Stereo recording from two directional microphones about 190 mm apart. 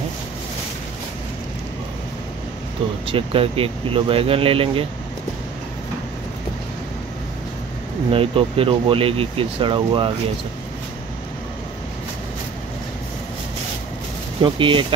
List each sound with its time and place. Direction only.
3.1 s speech: 30° right (ahead or behind)
8.1 s speech: 30° right (ahead or behind)
14.4 s speech: 25° right (ahead or behind)